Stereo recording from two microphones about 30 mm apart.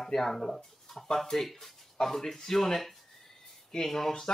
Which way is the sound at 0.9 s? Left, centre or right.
Centre.